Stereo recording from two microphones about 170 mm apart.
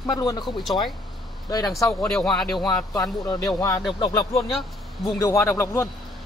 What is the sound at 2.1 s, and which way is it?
Speech, centre (ahead or behind).